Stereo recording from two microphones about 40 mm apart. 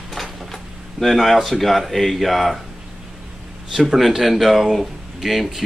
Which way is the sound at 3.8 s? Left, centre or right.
Centre.